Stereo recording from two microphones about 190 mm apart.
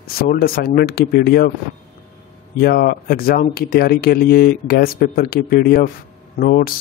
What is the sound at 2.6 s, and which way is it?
Speech, 55° left (ahead or behind).